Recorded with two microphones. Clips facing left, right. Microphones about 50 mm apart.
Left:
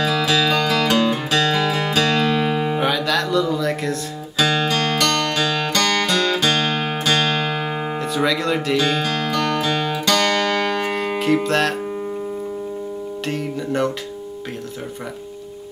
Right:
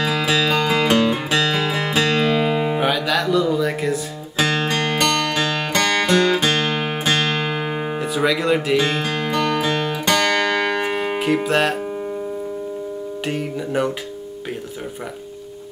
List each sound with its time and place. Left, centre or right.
0.0 s music: right; by 4.0 s centre
4.4 s music: right
7.5 s music: centre
8.7 s music: right
13.2 s music: centre